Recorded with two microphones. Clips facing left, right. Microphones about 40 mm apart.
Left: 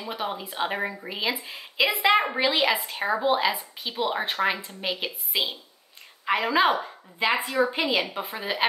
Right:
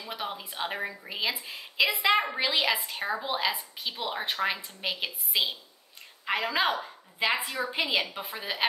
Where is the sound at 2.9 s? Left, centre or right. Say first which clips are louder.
Left 7 dB; left.